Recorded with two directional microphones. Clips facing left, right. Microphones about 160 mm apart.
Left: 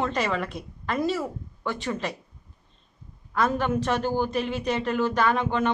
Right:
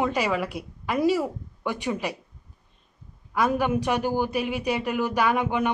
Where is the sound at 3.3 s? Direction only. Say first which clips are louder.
Right 1 dB; 10° right (ahead or behind).